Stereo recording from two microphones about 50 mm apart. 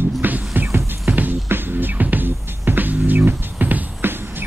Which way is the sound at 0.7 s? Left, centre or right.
Right.